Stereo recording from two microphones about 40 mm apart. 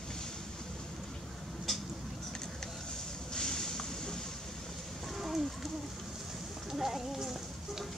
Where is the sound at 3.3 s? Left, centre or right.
Centre.